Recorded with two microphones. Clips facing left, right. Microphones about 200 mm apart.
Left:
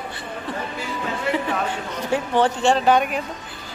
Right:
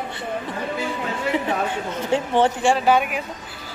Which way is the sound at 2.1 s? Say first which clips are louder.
Right 1 dB; 25° right (ahead or behind).